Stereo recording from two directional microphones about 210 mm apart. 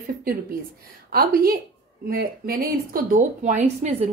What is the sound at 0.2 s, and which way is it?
Speech, 45° right (ahead or behind).